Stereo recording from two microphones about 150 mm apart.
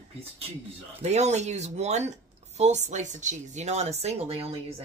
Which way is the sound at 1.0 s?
50° right (ahead or behind).